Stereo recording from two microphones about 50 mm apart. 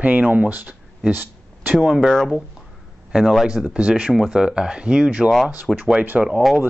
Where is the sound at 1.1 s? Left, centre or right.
Right.